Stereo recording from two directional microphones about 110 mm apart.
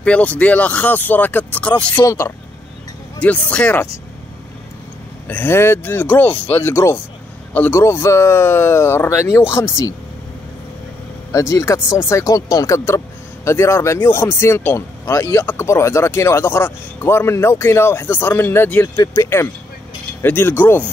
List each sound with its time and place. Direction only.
0.0 s speech: 10° left (ahead or behind)
2.0 s speech: 25° left (ahead or behind)
3.2 s speech: 15° left (ahead or behind)
5.3 s speech: 20° left (ahead or behind)
11.3 s speech: 30° left (ahead or behind)
15.3 s speech: 20° left (ahead or behind)